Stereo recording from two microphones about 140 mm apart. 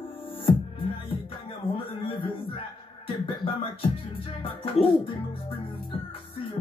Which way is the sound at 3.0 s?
40° left (ahead or behind).